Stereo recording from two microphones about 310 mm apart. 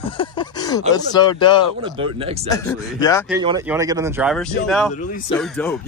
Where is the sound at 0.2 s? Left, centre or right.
Centre.